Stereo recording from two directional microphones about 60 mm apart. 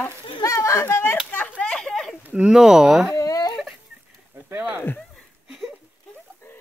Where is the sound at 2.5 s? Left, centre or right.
Centre.